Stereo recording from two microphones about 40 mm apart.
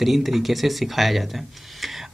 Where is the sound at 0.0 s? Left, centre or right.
Centre.